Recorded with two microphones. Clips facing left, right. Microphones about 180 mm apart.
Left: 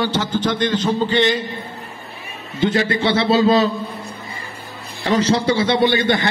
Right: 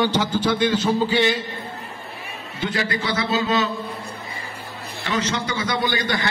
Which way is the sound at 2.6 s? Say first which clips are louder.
Left 7 dB; 25° left (ahead or behind).